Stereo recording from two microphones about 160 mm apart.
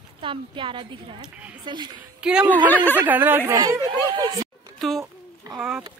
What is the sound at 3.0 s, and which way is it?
Speech, 10° right (ahead or behind).